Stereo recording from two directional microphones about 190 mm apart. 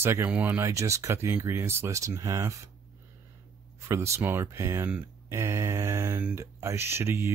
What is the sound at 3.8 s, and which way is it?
Speech, 15° right (ahead or behind).